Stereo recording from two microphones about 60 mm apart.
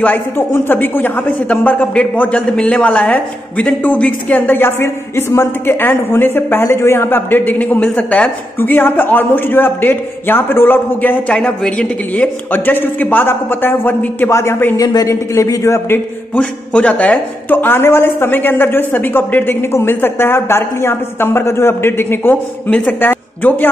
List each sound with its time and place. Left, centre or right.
0.4 s speech: left
8.5 s speech: left
11.3 s speech: centre
12.4 s speech: left
14.3 s a man's voice: left
14.8 s a woman's voice: left
15.6 s a man's voice: left
16.3 s a man's voice: left
17.6 s a woman's voice: left